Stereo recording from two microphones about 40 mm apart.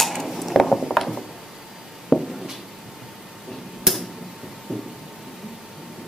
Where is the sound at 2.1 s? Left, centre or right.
Centre.